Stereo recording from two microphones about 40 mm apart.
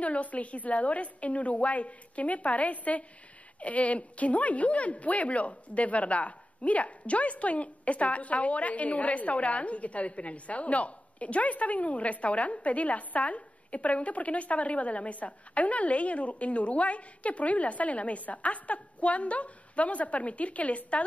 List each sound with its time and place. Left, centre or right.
0.0 s a woman's voice: left